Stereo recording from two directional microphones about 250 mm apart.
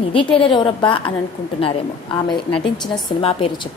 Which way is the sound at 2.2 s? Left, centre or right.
Centre.